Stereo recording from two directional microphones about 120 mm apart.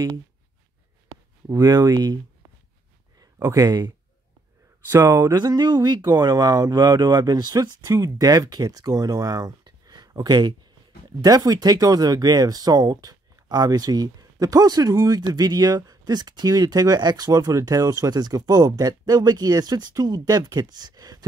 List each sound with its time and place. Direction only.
1.5 s speech: 30° right (ahead or behind)
3.2 s a sound: 25° right (ahead or behind)
4.9 s speech: 20° right (ahead or behind)
5.3 s speech: 35° right (ahead or behind)